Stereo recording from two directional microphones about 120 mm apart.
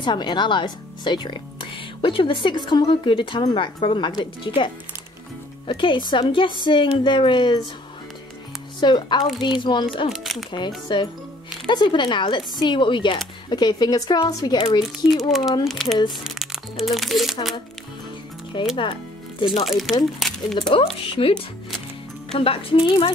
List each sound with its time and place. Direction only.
0.0 s speech: 40° left (ahead or behind)
8.7 s speech: 40° left (ahead or behind)
10.1 s speech: centre (ahead or behind)
10.9 s speech: 45° left (ahead or behind)
15.1 s speech: centre (ahead or behind)
18.5 s speech: 40° left (ahead or behind)
19.6 s speech: centre (ahead or behind)
20.7 s speech: 50° left (ahead or behind)